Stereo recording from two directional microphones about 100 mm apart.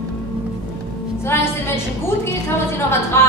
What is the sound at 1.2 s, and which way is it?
Speech, 25° left (ahead or behind).